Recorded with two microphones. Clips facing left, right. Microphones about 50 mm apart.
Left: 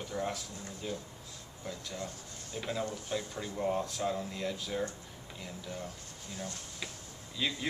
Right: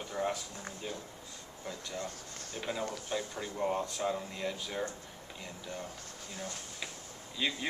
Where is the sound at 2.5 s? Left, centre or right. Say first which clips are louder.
Left 1 dB; centre.